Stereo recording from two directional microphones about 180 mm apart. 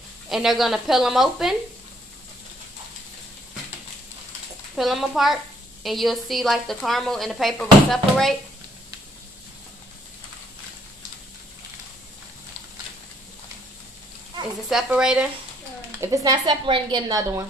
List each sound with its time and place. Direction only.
0.3 s speech: centre (ahead or behind)
4.7 s speech: centre (ahead or behind)
14.7 s speech: 5° right (ahead or behind)
16.0 s a woman's voice: 20° right (ahead or behind)